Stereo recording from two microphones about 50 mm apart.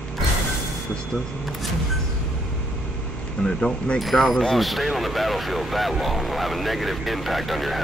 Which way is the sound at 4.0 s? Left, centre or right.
Centre.